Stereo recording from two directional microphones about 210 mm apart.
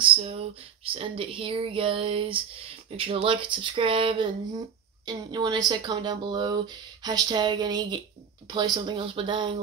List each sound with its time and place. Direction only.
0.0 s speech: 25° right (ahead or behind)